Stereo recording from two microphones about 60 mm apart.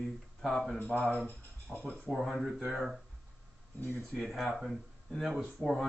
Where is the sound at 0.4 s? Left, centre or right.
Centre.